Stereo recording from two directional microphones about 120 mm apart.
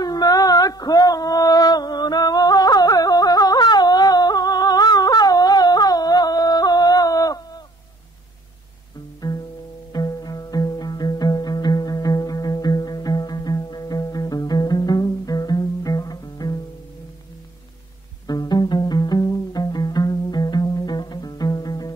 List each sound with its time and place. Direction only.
0.0 s a sound: 35° left (ahead or behind)
9.2 s music: 30° left (ahead or behind)
18.2 s music: 35° left (ahead or behind)